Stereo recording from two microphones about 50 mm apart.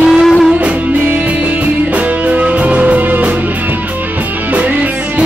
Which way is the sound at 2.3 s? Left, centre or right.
Right.